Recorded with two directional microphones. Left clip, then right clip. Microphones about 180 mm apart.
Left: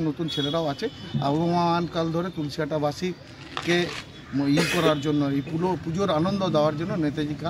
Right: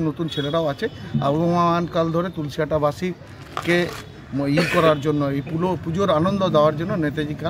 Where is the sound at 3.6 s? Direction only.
45° right (ahead or behind).